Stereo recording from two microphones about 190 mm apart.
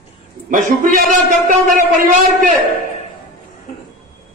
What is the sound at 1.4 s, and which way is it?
A man's voice, 45° right (ahead or behind).